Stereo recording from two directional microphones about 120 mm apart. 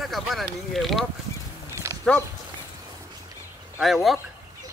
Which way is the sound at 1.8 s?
25° right (ahead or behind).